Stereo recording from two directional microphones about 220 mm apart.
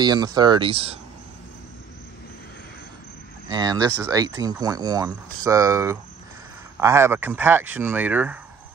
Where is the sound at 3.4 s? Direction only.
20° right (ahead or behind).